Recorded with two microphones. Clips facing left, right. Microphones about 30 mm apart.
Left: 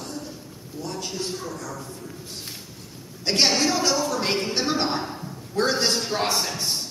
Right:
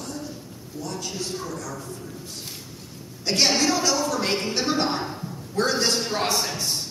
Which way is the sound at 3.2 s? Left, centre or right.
Centre.